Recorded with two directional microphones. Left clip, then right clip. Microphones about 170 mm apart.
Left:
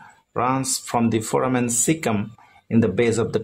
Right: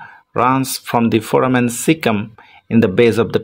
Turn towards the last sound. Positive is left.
turn(degrees=-25)  # may be behind; listen again after turning